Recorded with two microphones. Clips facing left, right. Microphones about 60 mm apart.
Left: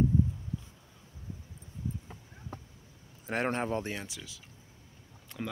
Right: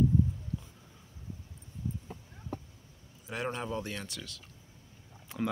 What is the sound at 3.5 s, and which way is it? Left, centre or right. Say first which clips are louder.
Speech: left 4 dB; left.